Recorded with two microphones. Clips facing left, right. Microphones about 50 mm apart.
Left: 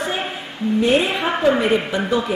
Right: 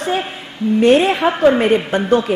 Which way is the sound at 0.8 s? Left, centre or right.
Right.